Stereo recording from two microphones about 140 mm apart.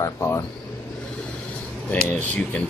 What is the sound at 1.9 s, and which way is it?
Speech, 10° left (ahead or behind).